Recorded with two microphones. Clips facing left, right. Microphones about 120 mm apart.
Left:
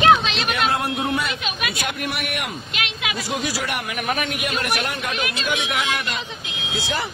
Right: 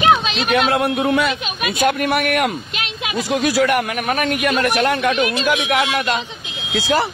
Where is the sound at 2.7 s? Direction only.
30° right (ahead or behind).